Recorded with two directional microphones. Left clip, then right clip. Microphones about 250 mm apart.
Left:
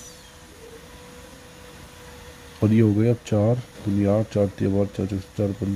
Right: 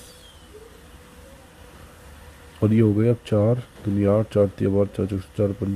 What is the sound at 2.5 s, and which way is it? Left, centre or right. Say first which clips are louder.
Speech: even; centre.